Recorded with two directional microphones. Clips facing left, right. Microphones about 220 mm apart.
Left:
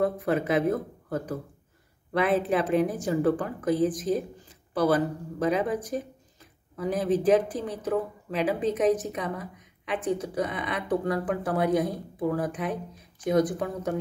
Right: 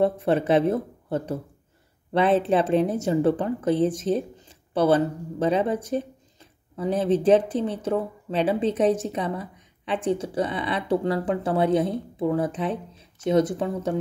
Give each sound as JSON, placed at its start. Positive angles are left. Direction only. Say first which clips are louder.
{"t": 0.0, "sound": "speech", "louder": "right 4 dB", "side_deg": -30}